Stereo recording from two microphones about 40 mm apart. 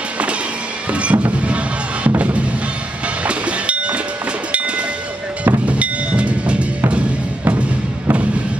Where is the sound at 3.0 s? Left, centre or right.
Right.